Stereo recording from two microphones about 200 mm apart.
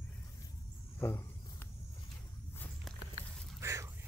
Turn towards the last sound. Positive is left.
turn(degrees=-15)  # may be behind; listen again after turning